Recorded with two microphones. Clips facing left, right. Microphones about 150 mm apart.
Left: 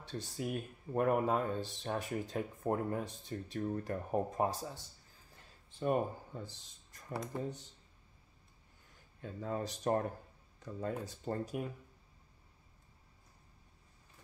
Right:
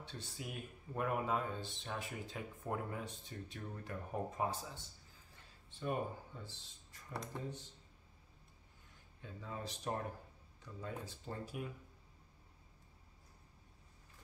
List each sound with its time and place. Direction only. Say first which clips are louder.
0.0 s speech: left 8 dB; 40° left (ahead or behind)
9.2 s speech: left 8 dB; 50° left (ahead or behind)